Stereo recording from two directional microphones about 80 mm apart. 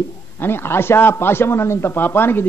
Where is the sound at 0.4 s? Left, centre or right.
Left.